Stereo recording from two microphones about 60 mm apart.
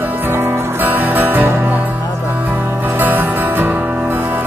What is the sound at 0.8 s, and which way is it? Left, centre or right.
Music, right.